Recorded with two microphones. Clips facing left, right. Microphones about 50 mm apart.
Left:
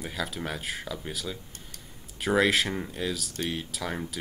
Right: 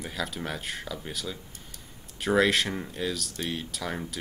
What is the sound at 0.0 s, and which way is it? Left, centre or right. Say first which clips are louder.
Speech: even; centre.